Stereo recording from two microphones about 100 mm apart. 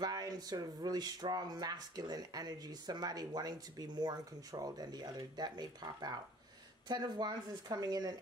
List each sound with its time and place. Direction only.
0.0 s speech: 40° right (ahead or behind)